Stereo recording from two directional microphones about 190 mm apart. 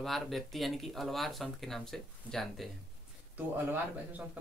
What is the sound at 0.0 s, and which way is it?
Speech, centre (ahead or behind).